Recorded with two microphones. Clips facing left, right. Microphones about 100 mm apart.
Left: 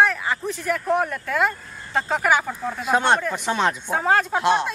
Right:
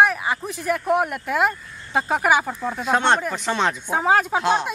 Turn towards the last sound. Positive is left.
turn(degrees=0)  # may be behind; listen again after turning